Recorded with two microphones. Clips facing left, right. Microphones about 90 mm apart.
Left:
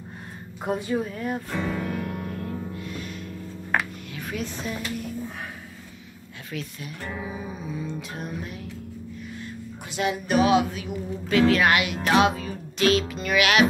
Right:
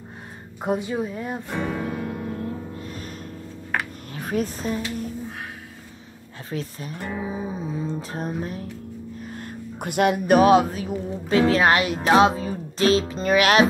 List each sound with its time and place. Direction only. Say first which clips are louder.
0.7 s speech: right 1 dB; 20° right (ahead or behind)
2.7 s music: even; 35° right (ahead or behind)
4.1 s speech: right 9 dB; 40° right (ahead or behind)
6.5 s music: right 4 dB; 35° right (ahead or behind)
7.0 s music: right 4 dB; 25° right (ahead or behind)
9.2 s speech: right 2 dB; 45° right (ahead or behind)
12.0 s music: right 5 dB; 30° right (ahead or behind)